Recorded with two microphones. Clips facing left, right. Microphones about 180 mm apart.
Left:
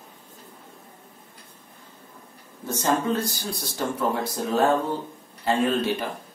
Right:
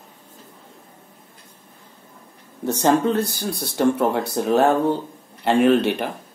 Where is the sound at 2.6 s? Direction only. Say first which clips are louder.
Right 6 dB; 70° right (ahead or behind).